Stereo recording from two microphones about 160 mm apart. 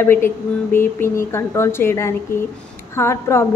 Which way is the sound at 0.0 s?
15° left (ahead or behind).